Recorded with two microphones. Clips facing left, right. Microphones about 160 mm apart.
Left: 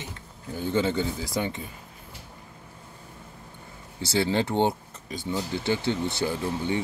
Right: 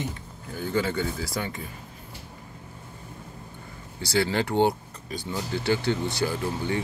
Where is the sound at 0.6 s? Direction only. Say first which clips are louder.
Left 1 dB; 25° left (ahead or behind).